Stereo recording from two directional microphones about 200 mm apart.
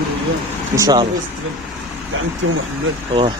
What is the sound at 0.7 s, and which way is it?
Speech, 20° right (ahead or behind).